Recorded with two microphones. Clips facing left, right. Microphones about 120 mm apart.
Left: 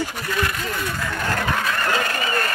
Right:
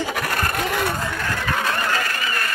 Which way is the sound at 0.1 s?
80° right.